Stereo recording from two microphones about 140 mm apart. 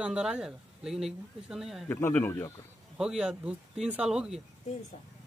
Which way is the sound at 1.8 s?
15° left (ahead or behind).